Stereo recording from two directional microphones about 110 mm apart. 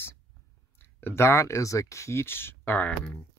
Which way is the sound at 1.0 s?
25° left (ahead or behind).